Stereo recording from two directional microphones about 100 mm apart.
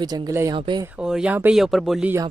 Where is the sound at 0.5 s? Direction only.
55° right (ahead or behind).